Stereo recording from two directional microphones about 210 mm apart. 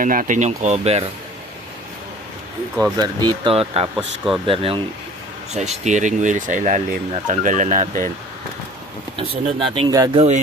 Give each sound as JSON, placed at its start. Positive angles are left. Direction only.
{"t": 0.0, "sound": "speech", "side_deg": -40}
{"t": 3.0, "sound": "speech", "side_deg": -20}
{"t": 9.1, "sound": "speech", "side_deg": -25}